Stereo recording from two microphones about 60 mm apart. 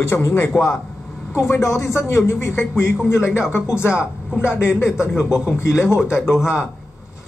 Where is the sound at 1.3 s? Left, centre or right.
Left.